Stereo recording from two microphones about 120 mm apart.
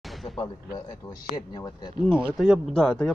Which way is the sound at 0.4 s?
40° left (ahead or behind).